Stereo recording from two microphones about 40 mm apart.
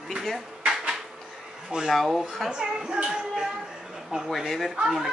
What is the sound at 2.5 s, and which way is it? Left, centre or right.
Speech, centre.